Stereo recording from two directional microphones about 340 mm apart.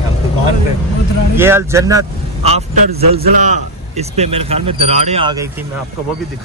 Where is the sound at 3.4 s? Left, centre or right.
Centre.